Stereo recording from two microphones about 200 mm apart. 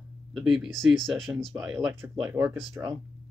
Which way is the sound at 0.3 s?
Centre (ahead or behind).